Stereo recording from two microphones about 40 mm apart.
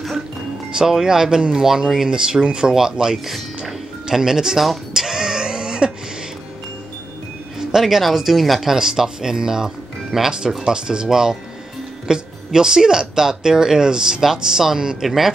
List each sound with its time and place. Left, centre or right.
1.0 s speech: centre
4.9 s a sound: centre
7.7 s speech: centre
8.7 s speech: centre